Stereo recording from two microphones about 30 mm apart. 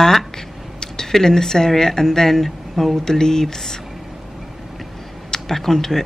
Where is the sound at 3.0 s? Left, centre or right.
Centre.